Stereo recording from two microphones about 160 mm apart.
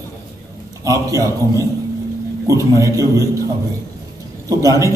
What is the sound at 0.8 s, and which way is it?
A man's voice, 20° right (ahead or behind).